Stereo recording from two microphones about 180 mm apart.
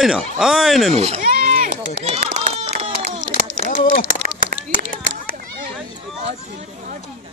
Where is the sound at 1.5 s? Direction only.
40° right (ahead or behind).